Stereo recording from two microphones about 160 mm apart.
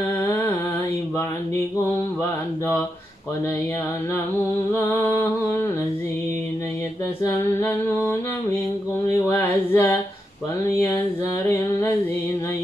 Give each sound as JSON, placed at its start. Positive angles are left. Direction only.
{"t": 4.7, "sound": "music", "side_deg": 20}
{"t": 7.2, "sound": "music", "side_deg": 15}
{"t": 9.3, "sound": "music", "side_deg": 15}